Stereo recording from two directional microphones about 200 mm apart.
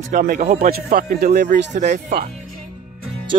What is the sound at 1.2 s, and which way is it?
Speech, 35° right (ahead or behind).